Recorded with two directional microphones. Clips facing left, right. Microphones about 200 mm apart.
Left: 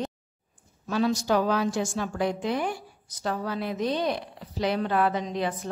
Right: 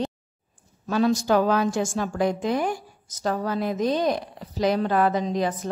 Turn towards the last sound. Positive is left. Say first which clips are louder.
# right 4 dB
turn(degrees=-40)  # may be behind; listen again after turning